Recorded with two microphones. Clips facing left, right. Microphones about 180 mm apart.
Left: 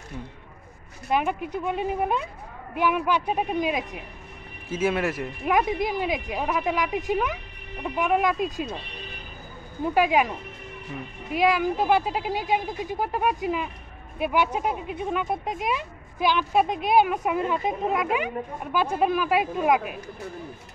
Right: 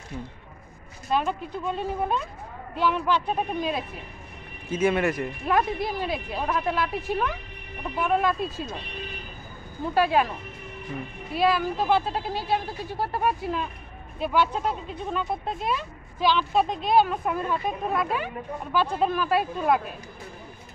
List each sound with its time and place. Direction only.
1.1 s speech: 15° left (ahead or behind)
9.8 s speech: 15° left (ahead or behind)
11.3 s speech: 15° left (ahead or behind)